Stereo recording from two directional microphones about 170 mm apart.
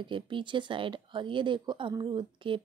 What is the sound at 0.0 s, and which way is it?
Speech, 30° right (ahead or behind).